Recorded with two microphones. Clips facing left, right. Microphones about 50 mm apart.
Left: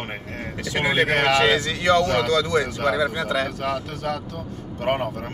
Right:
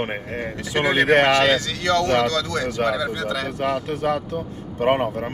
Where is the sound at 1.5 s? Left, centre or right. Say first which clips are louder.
Left 1 dB; centre.